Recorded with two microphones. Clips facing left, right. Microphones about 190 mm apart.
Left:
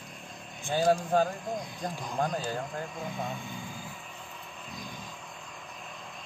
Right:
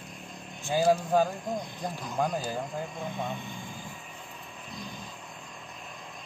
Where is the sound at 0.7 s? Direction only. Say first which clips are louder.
Right 1 dB; 10° right (ahead or behind).